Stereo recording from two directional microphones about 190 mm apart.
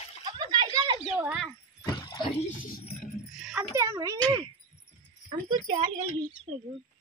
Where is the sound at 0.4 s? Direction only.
25° right (ahead or behind).